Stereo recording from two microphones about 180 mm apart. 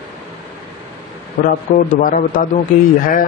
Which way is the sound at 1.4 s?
55° left (ahead or behind).